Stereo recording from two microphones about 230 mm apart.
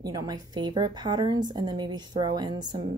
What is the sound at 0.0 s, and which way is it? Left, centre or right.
A woman's voice, centre.